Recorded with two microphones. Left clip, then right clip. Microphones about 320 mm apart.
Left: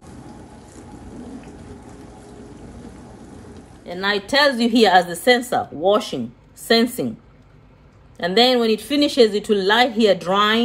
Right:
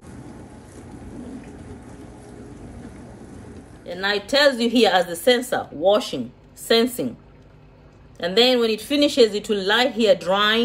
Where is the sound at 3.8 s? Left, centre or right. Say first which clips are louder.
Left 2 dB; centre.